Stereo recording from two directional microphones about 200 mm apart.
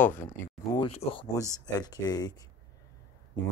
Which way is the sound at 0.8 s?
25° left (ahead or behind).